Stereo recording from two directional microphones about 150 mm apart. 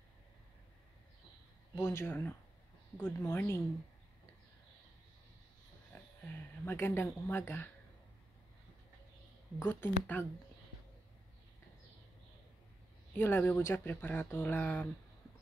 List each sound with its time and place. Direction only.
1.8 s speech: 15° left (ahead or behind)
6.2 s speech: 15° left (ahead or behind)
9.7 s speech: 15° left (ahead or behind)
13.2 s speech: 15° left (ahead or behind)